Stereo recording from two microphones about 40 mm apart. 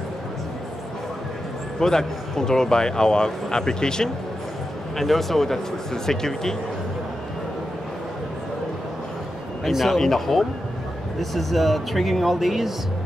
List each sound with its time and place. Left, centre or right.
1.8 s speech: centre
4.9 s speech: centre
9.8 s speech: centre